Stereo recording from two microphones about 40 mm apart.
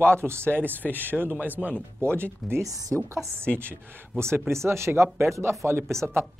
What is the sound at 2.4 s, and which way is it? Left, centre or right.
Speech, centre.